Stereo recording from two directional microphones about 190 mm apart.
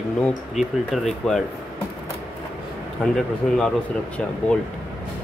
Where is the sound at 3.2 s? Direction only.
5° left (ahead or behind).